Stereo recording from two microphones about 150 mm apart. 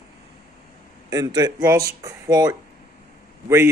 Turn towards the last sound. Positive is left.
turn(degrees=-15)  # may be behind; listen again after turning